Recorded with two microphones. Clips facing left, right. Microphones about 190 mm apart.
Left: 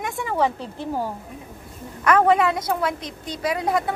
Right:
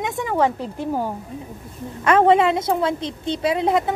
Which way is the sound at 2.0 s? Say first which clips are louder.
Right 3 dB; 25° right (ahead or behind).